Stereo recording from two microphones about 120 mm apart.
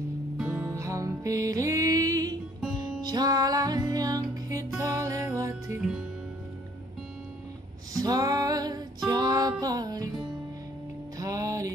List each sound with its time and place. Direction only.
0.5 s music: 25° right (ahead or behind)
8.0 s music: 30° right (ahead or behind)
11.1 s music: 30° right (ahead or behind)